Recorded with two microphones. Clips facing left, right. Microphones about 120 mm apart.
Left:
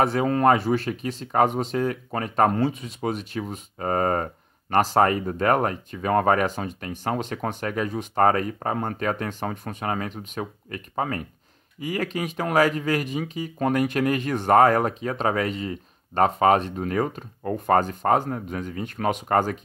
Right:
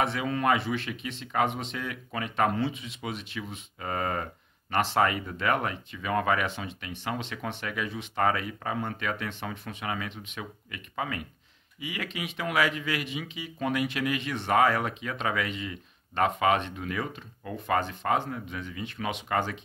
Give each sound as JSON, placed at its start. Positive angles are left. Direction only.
{"t": 0.0, "sound": "speech", "side_deg": 40}